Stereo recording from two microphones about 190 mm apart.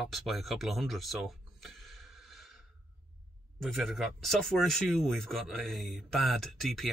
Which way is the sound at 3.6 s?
Centre (ahead or behind).